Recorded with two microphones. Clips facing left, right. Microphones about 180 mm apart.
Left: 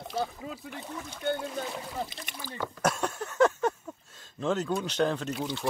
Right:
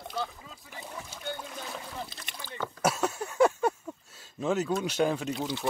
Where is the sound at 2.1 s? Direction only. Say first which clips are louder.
Left 3 dB; 15° left (ahead or behind).